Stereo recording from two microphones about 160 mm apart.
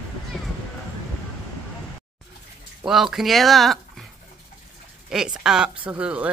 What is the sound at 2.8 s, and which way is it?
Speech, centre (ahead or behind).